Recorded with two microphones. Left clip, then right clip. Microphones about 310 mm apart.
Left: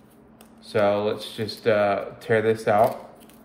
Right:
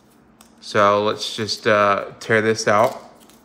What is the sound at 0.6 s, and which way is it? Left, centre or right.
Speech, centre.